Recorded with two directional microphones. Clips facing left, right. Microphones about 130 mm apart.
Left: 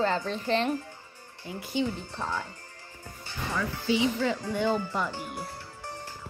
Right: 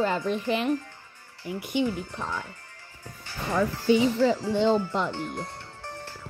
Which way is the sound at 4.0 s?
35° right (ahead or behind).